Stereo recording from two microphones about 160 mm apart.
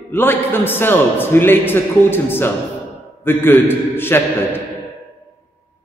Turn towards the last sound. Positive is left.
turn(degrees=15)  # may be behind; listen again after turning